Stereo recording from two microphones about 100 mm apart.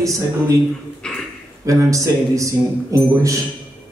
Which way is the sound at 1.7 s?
35° right (ahead or behind).